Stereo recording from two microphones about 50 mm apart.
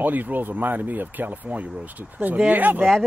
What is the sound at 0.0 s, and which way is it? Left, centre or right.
Speech, right.